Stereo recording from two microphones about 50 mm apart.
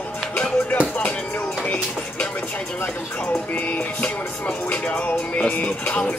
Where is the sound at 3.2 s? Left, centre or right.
Left.